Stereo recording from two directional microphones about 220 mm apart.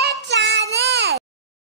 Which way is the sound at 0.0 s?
50° right (ahead or behind).